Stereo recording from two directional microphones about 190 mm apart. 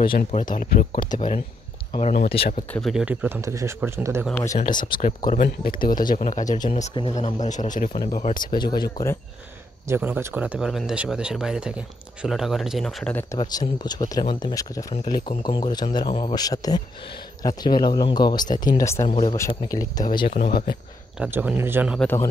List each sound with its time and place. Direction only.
0.3 s speech: 40° left (ahead or behind)
2.0 s speech: 35° left (ahead or behind)
2.7 s speech: centre (ahead or behind)
4.6 s speech: 25° left (ahead or behind)
5.2 s speech: 45° left (ahead or behind)
6.1 s speech: 40° left (ahead or behind)
7.9 s a man's voice: 20° left (ahead or behind)
9.8 s speech: 10° right (ahead or behind); by 13.4 s 10° left (ahead or behind)
13.4 s a man's voice: 20° left (ahead or behind)
19.0 s speech: 25° left (ahead or behind)
19.3 s a man's voice: 15° left (ahead or behind)
20.2 s speech: 50° left (ahead or behind)
21.2 s speech: 10° right (ahead or behind)
22.0 s a man's voice: 15° left (ahead or behind)